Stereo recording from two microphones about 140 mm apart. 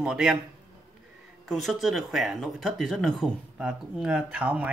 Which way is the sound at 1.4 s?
Centre (ahead or behind).